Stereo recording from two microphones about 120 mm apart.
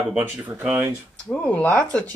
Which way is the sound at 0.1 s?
15° right (ahead or behind).